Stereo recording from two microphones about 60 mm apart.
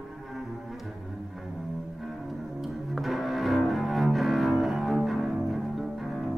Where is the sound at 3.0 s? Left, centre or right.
Centre.